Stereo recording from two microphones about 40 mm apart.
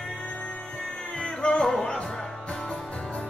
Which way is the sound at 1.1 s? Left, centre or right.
Left.